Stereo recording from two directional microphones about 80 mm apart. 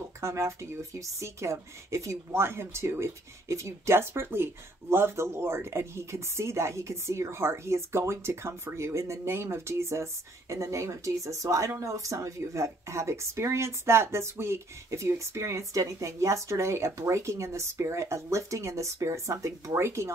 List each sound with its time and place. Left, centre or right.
0.2 s a woman's voice: right